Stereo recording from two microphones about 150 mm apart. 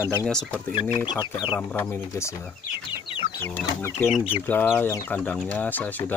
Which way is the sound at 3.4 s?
15° left (ahead or behind).